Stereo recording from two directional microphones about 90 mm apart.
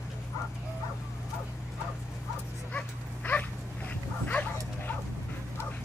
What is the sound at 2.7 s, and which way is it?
Dog, 20° left (ahead or behind).